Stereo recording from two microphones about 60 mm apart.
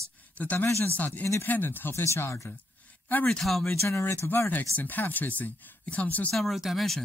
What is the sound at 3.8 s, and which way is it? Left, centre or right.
Speech, left.